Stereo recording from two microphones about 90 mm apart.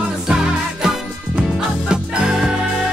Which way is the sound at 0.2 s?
5° right (ahead or behind).